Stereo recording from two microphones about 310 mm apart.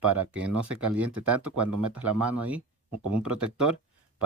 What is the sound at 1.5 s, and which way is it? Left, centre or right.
Speech, right.